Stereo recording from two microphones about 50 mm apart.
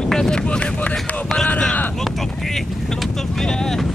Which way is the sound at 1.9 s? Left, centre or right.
Centre.